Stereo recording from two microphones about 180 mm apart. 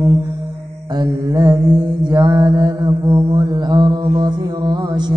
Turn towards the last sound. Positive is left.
turn(degrees=-25)  # may be behind; listen again after turning